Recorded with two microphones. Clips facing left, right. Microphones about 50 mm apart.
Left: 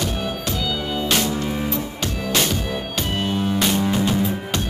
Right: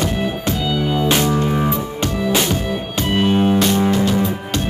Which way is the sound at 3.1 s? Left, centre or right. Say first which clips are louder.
Right 9 dB; right.